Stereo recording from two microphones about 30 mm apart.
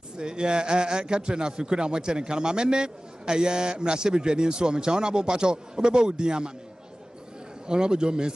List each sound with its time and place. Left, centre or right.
0.2 s a man's voice: right
7.6 s a man's voice: right